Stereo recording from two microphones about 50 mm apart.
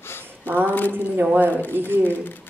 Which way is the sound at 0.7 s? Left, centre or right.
Left.